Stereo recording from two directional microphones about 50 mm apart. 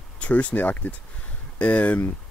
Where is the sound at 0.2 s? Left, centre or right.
Left.